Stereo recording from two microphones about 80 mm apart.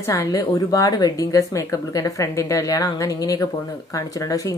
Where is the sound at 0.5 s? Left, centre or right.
Left.